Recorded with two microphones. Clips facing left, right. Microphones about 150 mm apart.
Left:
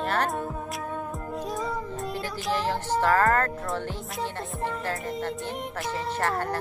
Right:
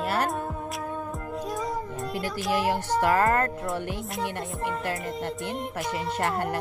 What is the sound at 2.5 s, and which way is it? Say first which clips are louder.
Speech: right 1 dB; 10° right (ahead or behind).